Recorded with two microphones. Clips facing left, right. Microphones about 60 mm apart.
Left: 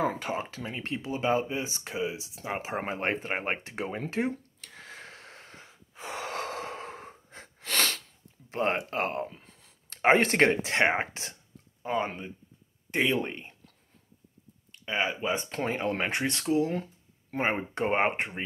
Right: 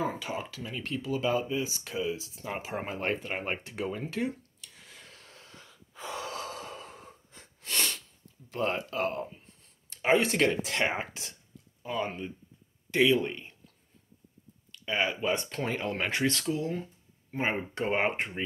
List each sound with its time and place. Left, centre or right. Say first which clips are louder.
0.2 s speech: left 3 dB; left
4.6 s snort: left 7 dB; left
6.3 s snort: left 4 dB; left
7.6 s sneeze: left 4 dB; left
8.5 s speech: left 2 dB; left
9.3 s a sound: left 2 dB; left
9.8 s speech: left 3 dB; left
11.8 s speech: left 3 dB; left
14.7 s speech: even; left
16.7 s a sound: left 3 dB; left
17.4 s speech: left 2 dB; left